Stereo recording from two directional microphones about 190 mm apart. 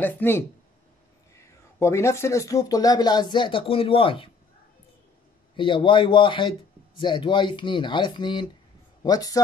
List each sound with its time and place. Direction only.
0.0 s speech: 10° left (ahead or behind); by 4.3 s 30° left (ahead or behind)
5.6 s speech: 25° left (ahead or behind)